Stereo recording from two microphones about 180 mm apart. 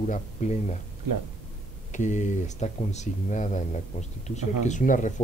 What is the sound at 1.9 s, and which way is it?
Speech, 40° left (ahead or behind).